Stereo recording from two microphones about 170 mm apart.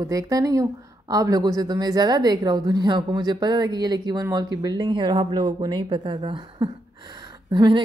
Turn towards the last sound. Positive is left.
turn(degrees=-25)  # may be behind; listen again after turning